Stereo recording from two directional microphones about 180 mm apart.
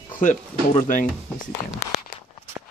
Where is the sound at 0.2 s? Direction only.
45° left (ahead or behind).